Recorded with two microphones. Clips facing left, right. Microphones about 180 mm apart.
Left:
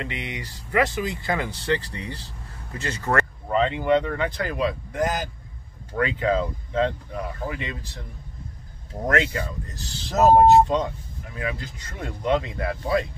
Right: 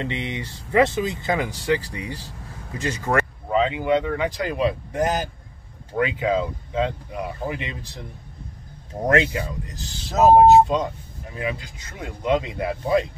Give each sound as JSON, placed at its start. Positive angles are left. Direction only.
{"t": 0.0, "sound": "speech", "side_deg": -25}
{"t": 9.0, "sound": "speech", "side_deg": -15}
{"t": 10.1, "sound": "speech", "side_deg": 0}